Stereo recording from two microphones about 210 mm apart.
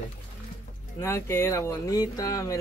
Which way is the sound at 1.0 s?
15° left (ahead or behind).